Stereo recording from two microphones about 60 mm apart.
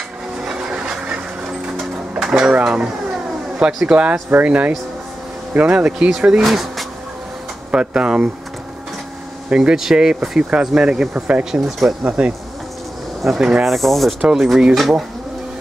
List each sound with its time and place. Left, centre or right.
0.4 s vehicle: centre
1.8 s a sound: centre
2.5 s a sound: centre
3.5 s speech: centre
6.4 s speech: centre
7.7 s speech: centre
9.5 s speech: centre
13.4 s speech: centre
13.7 s speech: centre